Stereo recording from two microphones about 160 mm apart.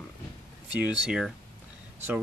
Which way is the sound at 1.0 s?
5° right (ahead or behind).